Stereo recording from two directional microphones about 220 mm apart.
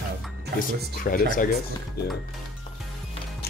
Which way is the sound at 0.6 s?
40° left (ahead or behind).